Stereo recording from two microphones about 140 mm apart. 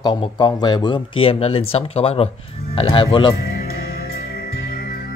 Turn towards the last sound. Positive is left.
turn(degrees=90)